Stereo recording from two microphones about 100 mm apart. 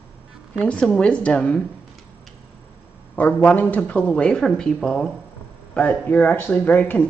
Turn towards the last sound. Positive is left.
turn(degrees=15)  # may be behind; listen again after turning